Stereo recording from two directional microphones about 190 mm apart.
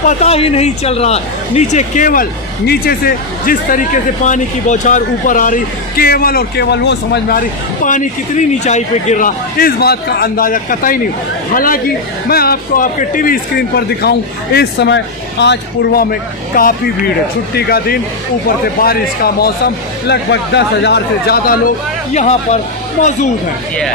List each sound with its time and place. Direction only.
0.0 s speech: 35° left (ahead or behind); by 7.3 s 60° left (ahead or behind)
7.8 s speech: 40° left (ahead or behind); by 21.5 s 60° left (ahead or behind)
22.1 s speech: 35° left (ahead or behind)